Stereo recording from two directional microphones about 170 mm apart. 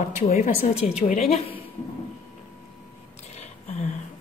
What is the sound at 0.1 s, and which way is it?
A woman's voice, 40° left (ahead or behind).